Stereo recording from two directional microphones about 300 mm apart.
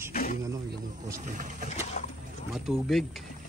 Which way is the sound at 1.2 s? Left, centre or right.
Right.